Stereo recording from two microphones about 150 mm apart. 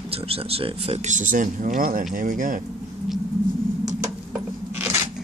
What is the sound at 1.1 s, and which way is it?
Speech, 60° right (ahead or behind).